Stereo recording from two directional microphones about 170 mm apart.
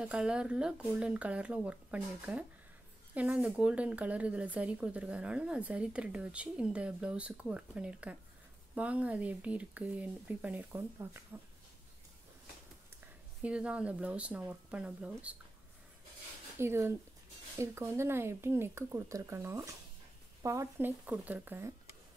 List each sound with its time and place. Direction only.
0.0 s speech: 5° right (ahead or behind)
13.4 s speech: 5° right (ahead or behind)
16.5 s speech: 15° right (ahead or behind)